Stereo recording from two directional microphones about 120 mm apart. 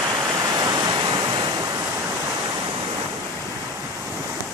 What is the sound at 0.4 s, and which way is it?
Waves, 30° right (ahead or behind).